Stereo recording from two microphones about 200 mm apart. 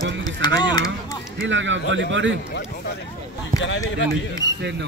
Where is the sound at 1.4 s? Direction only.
65° right (ahead or behind).